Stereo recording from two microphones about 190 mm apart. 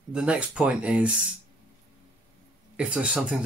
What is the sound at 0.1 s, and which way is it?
Speech, 5° right (ahead or behind).